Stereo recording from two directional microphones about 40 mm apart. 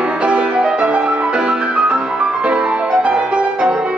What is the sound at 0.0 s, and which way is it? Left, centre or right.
Music, right.